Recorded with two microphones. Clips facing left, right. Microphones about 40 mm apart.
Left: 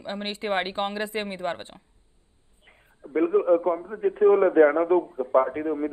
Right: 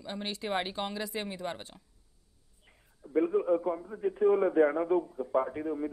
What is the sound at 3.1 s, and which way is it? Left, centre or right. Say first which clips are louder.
Speech: left 6 dB; left.